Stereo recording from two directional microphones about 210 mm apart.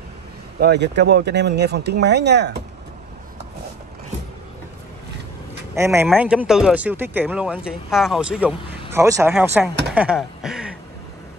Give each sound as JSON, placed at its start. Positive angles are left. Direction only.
{"t": 0.6, "sound": "speech", "side_deg": -55}
{"t": 5.8, "sound": "speech", "side_deg": -10}